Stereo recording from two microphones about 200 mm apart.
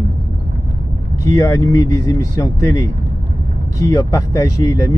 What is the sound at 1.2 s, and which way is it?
Speech, 15° left (ahead or behind).